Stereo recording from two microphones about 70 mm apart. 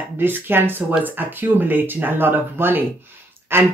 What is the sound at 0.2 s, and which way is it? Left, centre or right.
Speech, right.